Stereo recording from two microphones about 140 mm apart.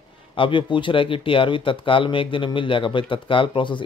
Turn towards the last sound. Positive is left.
turn(degrees=35)  # may be behind; listen again after turning